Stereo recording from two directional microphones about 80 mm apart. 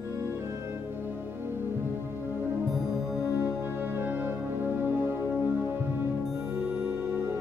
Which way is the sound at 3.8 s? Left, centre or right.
Right.